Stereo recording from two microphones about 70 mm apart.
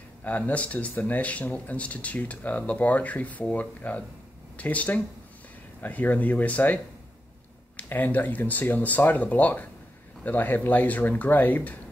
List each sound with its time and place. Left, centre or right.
0.2 s speech: left